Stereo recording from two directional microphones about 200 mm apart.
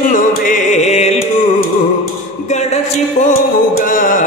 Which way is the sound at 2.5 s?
35° left (ahead or behind).